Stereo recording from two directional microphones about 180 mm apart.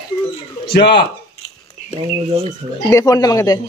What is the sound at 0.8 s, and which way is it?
Speech, 65° left (ahead or behind).